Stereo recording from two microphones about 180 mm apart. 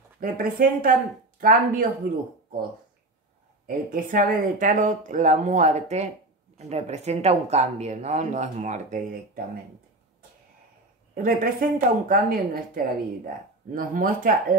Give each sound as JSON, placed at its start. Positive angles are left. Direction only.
{"t": 0.2, "sound": "speech", "side_deg": -50}
{"t": 3.6, "sound": "speech", "side_deg": -50}
{"t": 11.2, "sound": "speech", "side_deg": -50}